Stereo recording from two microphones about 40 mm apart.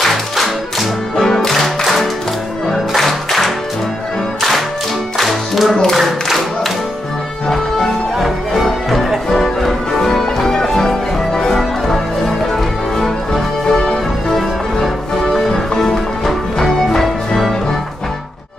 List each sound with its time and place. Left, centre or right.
0.0 s music: centre
5.9 s clapping: centre
7.4 s music: centre
9.3 s music: centre
15.2 s music: centre